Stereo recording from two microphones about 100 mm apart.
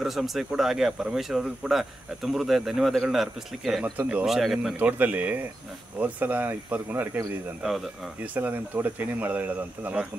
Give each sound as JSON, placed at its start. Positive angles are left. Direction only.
{"t": 0.0, "sound": "speech", "side_deg": 0}
{"t": 3.8, "sound": "speech", "side_deg": -15}
{"t": 4.7, "sound": "speech", "side_deg": -15}
{"t": 7.6, "sound": "speech", "side_deg": 0}
{"t": 8.2, "sound": "speech", "side_deg": -20}